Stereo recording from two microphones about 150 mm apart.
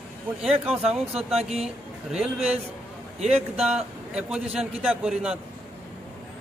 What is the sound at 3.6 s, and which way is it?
A man's voice, 5° right (ahead or behind).